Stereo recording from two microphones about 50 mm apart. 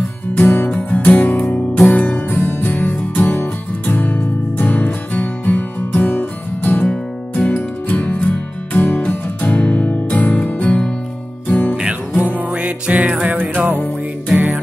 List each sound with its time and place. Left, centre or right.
0.7 s music: left
6.8 s music: centre
7.4 s music: left
12.2 s music: right